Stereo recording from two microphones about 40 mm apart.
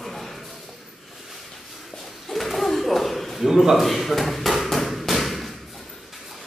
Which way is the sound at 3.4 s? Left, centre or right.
Centre.